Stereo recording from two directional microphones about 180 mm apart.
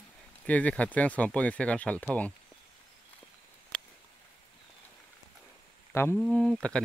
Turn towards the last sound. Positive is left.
turn(degrees=5)  # may be behind; listen again after turning